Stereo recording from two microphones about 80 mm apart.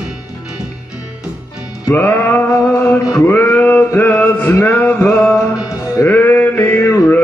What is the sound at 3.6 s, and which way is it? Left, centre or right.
Male singing, left.